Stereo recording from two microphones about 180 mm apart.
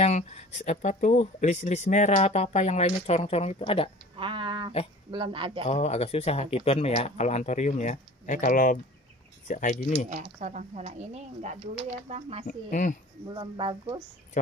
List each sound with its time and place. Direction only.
0.0 s speech: 40° left (ahead or behind)
4.2 s speech: 30° right (ahead or behind)
5.7 s speech: 35° left (ahead or behind)
10.0 s speech: 45° right (ahead or behind)
12.4 s speech: 45° left (ahead or behind)
13.3 s speech: 25° right (ahead or behind)
14.3 s speech: 45° left (ahead or behind)